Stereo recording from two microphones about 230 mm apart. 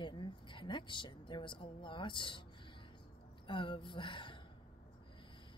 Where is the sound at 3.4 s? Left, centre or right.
Left.